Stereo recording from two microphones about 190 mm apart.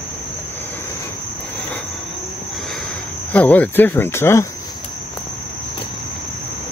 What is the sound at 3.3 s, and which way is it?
Speech, 10° left (ahead or behind).